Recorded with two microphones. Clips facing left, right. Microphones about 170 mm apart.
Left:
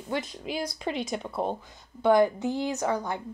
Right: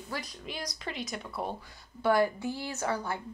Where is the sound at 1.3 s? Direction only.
30° left (ahead or behind).